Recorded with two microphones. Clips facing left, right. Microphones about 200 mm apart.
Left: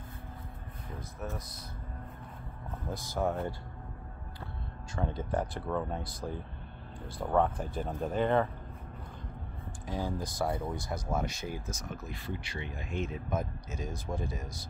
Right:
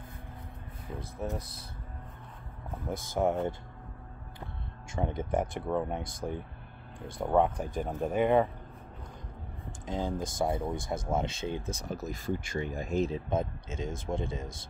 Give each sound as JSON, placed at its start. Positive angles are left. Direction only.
{"t": 1.2, "sound": "speech", "side_deg": -30}
{"t": 3.2, "sound": "speech", "side_deg": -20}
{"t": 4.9, "sound": "speech", "side_deg": -20}
{"t": 9.8, "sound": "speech", "side_deg": -20}